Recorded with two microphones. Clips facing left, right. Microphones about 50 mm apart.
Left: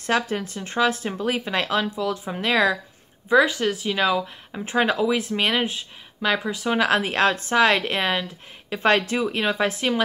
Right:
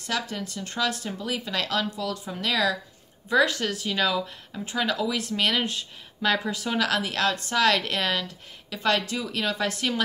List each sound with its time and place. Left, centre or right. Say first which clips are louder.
0.0 s speech: left 7 dB; left
3.3 s speech: left 4 dB; centre
4.5 s speech: left 7 dB; left
5.3 s speech: left 3 dB; left
6.7 s speech: left 5 dB; left